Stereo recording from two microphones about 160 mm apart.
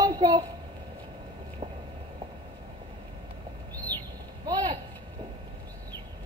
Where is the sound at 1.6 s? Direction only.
35° right (ahead or behind).